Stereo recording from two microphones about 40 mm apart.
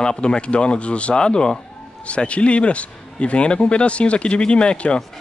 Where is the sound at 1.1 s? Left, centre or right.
Centre.